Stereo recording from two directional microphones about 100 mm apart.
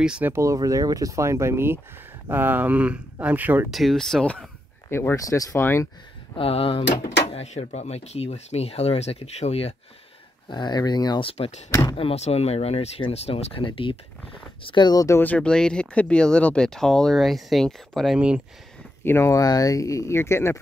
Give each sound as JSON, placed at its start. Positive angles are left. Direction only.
{"t": 0.0, "sound": "speech", "side_deg": -10}
{"t": 0.3, "sound": "speech", "side_deg": -30}
{"t": 3.7, "sound": "speech", "side_deg": 0}
{"t": 4.8, "sound": "speech", "side_deg": 25}
{"t": 5.1, "sound": "speech", "side_deg": 35}
{"t": 6.3, "sound": "speech", "side_deg": 70}
{"t": 7.3, "sound": "speech", "side_deg": 90}
{"t": 10.5, "sound": "speech", "side_deg": 45}
{"t": 11.1, "sound": "speech", "side_deg": 70}
{"t": 14.9, "sound": "speech", "side_deg": 40}
{"t": 15.1, "sound": "speech", "side_deg": 15}
{"t": 19.0, "sound": "speech", "side_deg": 25}
{"t": 19.4, "sound": "speech", "side_deg": 40}